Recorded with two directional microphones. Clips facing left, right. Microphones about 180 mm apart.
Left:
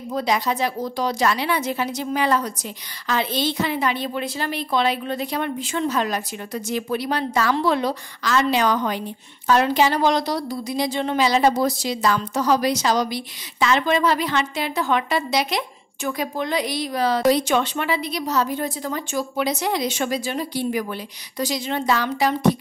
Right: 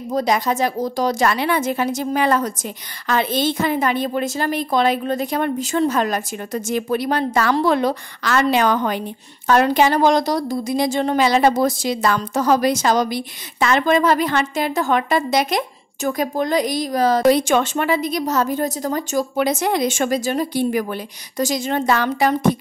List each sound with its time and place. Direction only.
0.1 s a woman's voice: 45° right (ahead or behind)